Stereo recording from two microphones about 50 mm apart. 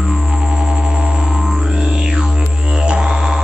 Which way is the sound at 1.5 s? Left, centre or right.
Centre.